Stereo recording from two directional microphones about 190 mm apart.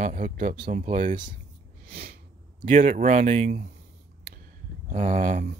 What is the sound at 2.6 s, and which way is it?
Speech, 40° right (ahead or behind).